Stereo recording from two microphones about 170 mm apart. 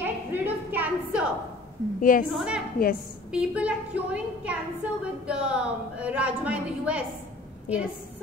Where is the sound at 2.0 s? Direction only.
55° left (ahead or behind).